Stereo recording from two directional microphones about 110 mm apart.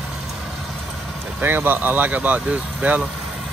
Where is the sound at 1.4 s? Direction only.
20° right (ahead or behind).